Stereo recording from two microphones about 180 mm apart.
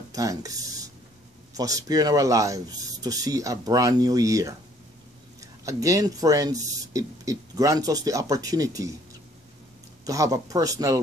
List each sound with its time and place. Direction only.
0.1 s speech: 20° right (ahead or behind)
1.5 s speech: 20° right (ahead or behind)
10.0 s speech: 20° right (ahead or behind)